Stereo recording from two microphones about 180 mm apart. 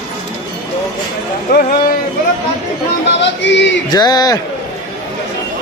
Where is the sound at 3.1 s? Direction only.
80° left.